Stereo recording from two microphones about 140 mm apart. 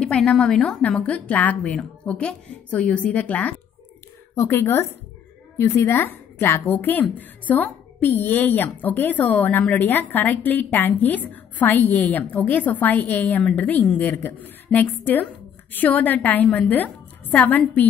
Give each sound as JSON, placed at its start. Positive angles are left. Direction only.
{"t": 0.0, "sound": "speech", "side_deg": 5}